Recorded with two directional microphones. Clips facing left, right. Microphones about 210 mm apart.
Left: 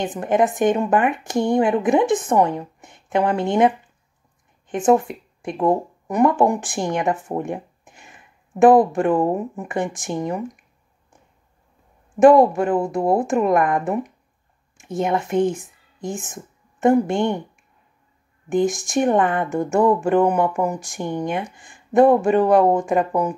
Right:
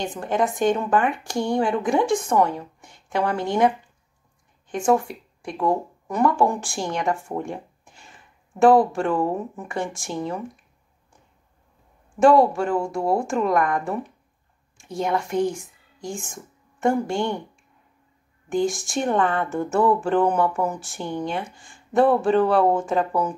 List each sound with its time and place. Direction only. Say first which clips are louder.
0.0 s speech: left 4 dB; 20° left (ahead or behind)
12.2 s speech: left 4 dB; 20° left (ahead or behind)
18.5 s speech: left 4 dB; 20° left (ahead or behind)